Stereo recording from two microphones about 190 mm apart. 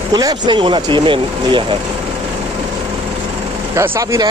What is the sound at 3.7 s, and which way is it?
Speech, 15° right (ahead or behind).